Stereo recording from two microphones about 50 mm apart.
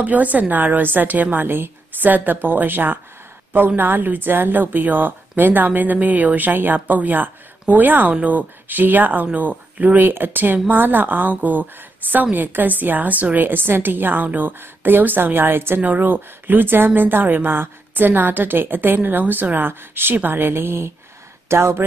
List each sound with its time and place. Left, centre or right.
0.0 s a woman's voice: right
15.8 s a woman's voice: right